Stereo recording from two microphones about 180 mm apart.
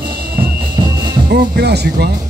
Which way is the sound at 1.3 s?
65° right (ahead or behind).